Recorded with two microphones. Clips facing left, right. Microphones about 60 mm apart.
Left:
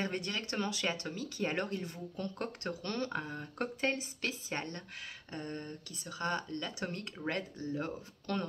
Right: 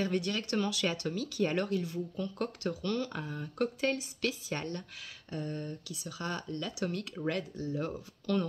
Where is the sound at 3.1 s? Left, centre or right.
Left.